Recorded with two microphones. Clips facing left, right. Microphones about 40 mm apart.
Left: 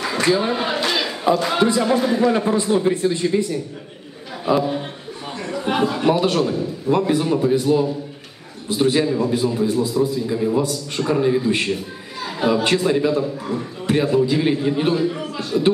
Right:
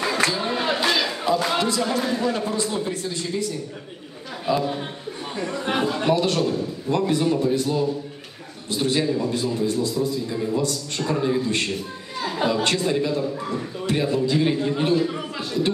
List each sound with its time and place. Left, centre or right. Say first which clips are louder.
0.0 s a sound: left 4 dB; centre
1.6 s a man's voice: left 6 dB; centre
4.6 s a man's voice: left 4 dB; centre